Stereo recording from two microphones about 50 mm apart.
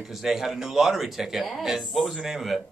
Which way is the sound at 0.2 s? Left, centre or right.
Centre.